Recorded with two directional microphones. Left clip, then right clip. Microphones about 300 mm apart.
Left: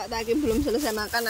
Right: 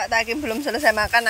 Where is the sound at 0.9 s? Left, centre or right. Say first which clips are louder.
Right 8 dB; centre.